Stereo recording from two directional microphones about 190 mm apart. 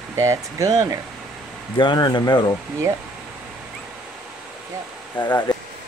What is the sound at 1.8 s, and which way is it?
Speech, 25° left (ahead or behind).